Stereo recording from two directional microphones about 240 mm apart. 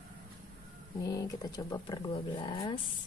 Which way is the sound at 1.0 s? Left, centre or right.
Centre.